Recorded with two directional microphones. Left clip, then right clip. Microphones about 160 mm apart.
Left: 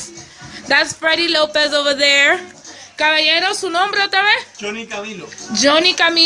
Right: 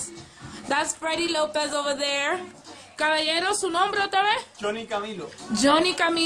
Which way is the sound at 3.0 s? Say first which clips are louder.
Left 9 dB; centre (ahead or behind).